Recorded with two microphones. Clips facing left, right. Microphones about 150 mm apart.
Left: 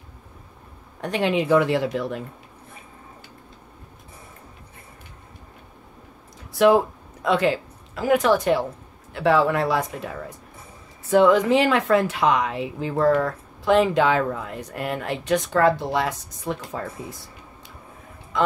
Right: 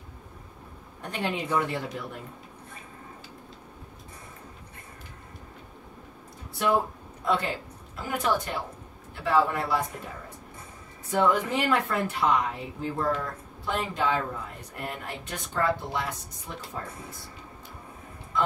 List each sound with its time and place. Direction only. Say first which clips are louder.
1.0 s speech: left 9 dB; 90° left
6.5 s a woman's voice: left 9 dB; 90° left
18.3 s a man's voice: left 6 dB; 90° left